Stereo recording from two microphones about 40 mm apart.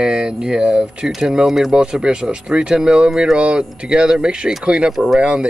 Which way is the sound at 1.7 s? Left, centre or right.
Right.